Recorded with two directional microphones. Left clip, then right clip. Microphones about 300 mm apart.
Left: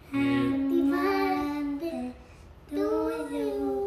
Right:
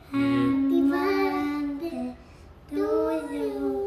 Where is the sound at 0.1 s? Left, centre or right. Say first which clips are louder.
Right 2 dB; centre.